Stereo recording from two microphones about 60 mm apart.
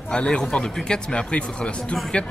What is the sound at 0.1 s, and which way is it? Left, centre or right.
A man's voice, centre.